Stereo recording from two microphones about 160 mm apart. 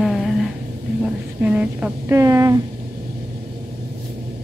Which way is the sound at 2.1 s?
20° right (ahead or behind).